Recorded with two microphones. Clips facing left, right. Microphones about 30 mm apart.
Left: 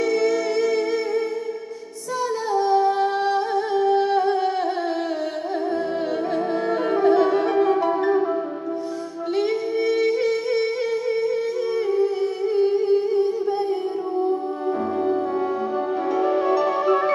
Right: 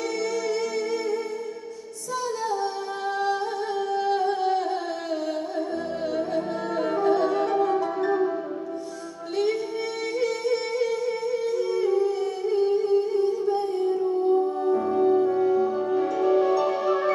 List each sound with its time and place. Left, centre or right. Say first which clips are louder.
0.1 s music: left 6 dB; left
2.5 s singing: left 9 dB; left
3.8 s music: left 4 dB; left
6.3 s music: left 4 dB; left
9.4 s singing: left 3 dB; left
11.8 s music: left 3 dB; left
14.7 s music: right 1 dB; centre